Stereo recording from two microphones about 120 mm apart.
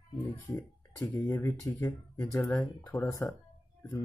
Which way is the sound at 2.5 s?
30° left (ahead or behind).